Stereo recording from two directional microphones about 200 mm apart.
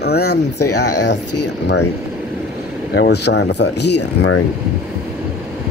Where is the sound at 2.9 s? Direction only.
60° left (ahead or behind).